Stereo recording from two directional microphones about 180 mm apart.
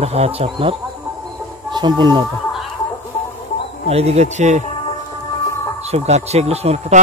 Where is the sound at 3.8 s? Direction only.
35° right (ahead or behind).